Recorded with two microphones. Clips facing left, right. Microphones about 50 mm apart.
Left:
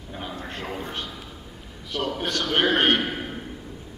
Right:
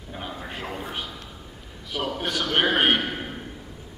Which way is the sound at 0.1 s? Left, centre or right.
Centre.